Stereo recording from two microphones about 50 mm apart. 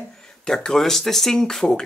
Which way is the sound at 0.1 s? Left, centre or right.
Centre.